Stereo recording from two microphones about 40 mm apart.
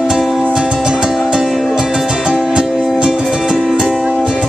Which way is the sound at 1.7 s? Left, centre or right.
Centre.